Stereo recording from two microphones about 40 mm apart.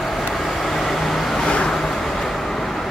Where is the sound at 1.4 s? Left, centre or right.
Left.